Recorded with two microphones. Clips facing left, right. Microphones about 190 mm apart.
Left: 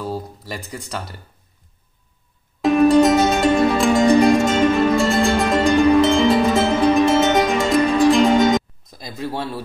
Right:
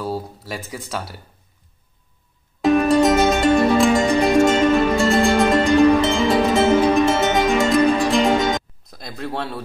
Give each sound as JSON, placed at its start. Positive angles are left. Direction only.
{"t": 0.0, "sound": "speech", "side_deg": -5}
{"t": 2.6, "sound": "music", "side_deg": 0}